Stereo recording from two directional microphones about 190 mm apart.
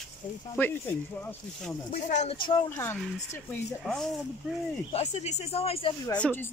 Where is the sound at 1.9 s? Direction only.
40° left (ahead or behind).